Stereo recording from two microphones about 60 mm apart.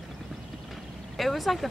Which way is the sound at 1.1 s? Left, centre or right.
Centre.